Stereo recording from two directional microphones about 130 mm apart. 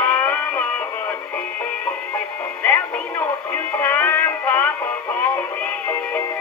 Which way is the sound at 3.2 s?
20° left (ahead or behind).